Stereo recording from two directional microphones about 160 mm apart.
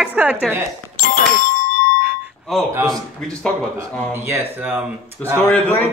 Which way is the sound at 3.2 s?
5° left (ahead or behind).